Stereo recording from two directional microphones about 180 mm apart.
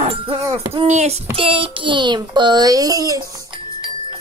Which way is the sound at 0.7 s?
35° right (ahead or behind).